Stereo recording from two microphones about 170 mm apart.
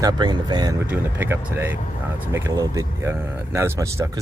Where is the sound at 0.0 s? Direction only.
25° right (ahead or behind).